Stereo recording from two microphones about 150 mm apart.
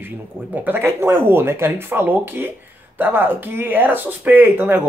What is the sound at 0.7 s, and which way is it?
Speech, 15° right (ahead or behind).